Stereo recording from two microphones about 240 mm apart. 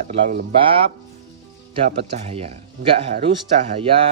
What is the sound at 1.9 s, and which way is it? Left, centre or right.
Speech, right.